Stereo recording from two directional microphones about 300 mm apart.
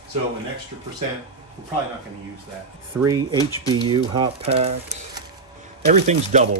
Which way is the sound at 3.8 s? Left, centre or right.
Centre.